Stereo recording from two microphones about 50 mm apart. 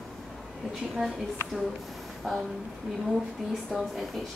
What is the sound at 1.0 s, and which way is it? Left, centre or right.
Speech, right.